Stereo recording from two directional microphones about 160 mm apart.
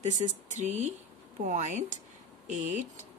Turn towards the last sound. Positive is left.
turn(degrees=-50)  # may be behind; listen again after turning